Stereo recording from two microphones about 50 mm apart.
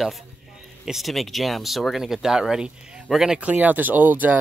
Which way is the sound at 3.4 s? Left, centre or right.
Right.